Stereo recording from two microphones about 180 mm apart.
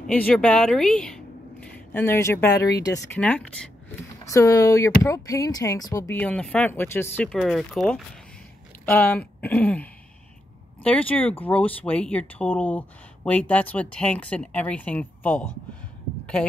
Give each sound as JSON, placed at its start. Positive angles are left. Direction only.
{"t": 0.0, "sound": "speech", "side_deg": 5}
{"t": 4.2, "sound": "speech", "side_deg": 15}
{"t": 7.2, "sound": "speech", "side_deg": 0}
{"t": 8.8, "sound": "speech", "side_deg": 10}